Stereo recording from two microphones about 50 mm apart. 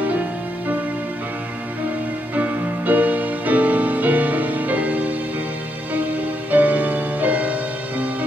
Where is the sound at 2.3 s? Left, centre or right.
Right.